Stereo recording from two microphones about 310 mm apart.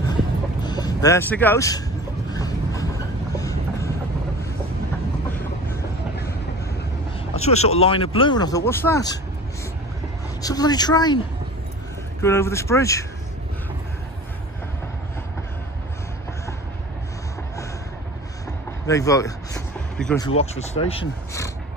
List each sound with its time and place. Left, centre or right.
0.6 s speech: centre
2.3 s music: centre
3.3 s train: centre
7.4 s speech: left
10.4 s speech: centre
12.2 s speech: centre
18.9 s speech: centre
20.2 s speech: left